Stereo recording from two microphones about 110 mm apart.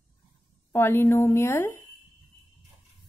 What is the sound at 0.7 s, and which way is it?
A woman's voice, 20° left (ahead or behind).